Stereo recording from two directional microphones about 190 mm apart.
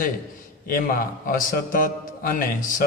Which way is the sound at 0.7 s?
45° left (ahead or behind).